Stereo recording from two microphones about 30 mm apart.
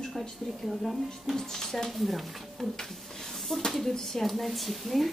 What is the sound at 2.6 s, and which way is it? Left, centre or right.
Speech, centre.